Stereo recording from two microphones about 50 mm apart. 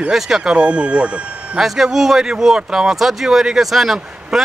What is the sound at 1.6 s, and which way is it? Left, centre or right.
Speech, centre.